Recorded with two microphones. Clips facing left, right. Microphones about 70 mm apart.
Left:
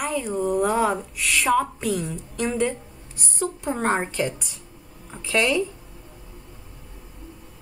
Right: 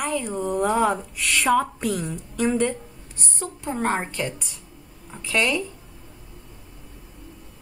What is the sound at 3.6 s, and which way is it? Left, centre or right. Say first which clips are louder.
Speech: even; centre.